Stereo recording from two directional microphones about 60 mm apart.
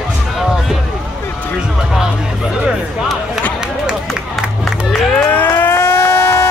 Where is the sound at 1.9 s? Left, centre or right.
Centre.